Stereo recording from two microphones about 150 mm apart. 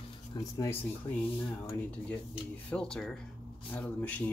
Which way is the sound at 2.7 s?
5° left (ahead or behind).